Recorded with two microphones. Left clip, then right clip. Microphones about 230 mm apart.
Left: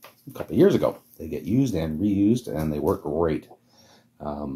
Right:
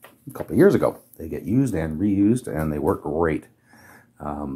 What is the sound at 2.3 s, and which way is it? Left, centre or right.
Speech, right.